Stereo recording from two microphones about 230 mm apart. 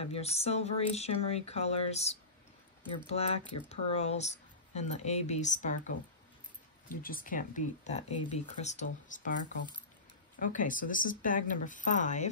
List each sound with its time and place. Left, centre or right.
0.0 s speech: left
3.1 s speech: left
10.4 s speech: left